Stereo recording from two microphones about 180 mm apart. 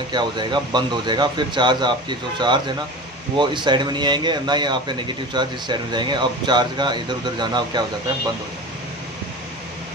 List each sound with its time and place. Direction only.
0.1 s speech: 25° right (ahead or behind)